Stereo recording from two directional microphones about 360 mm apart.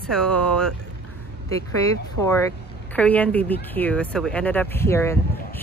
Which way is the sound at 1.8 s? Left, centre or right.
Centre.